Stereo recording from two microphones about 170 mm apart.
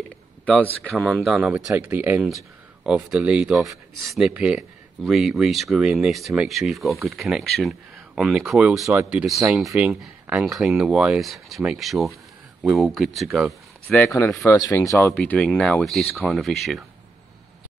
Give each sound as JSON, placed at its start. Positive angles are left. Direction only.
{"t": 0.8, "sound": "speech", "side_deg": 5}
{"t": 13.8, "sound": "speech", "side_deg": 10}